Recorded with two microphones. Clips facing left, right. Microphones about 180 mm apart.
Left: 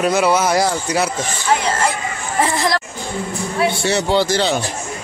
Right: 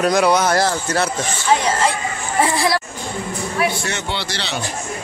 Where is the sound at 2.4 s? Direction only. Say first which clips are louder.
Even; 10° right (ahead or behind).